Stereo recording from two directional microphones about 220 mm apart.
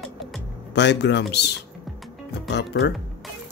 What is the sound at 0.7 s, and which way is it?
Speech, 50° left (ahead or behind).